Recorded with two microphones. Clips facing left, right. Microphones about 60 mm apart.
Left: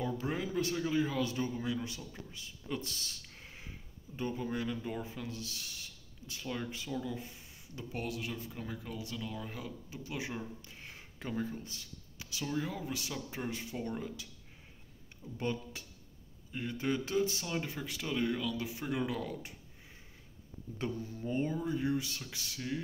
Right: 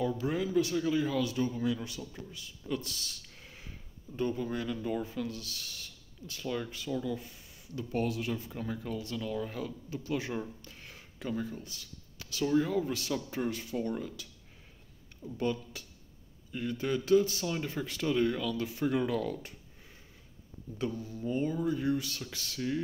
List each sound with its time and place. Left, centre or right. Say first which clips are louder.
0.0 s speech: right 4 dB; left
2.3 s a sound: right 3 dB; left
4.2 s speech: right 3 dB; centre
7.1 s a sound: right 4 dB; left
7.9 s speech: right 7 dB; centre; by 11.9 s left
12.2 s a sound: right 7 dB; centre
12.5 s speech: right 9 dB; centre
13.5 s speech: right 3 dB; left
15.3 s speech: right 4 dB; left
17.5 s speech: right 3 dB; centre
20.7 s speech: right 3 dB; left; by 22.6 s centre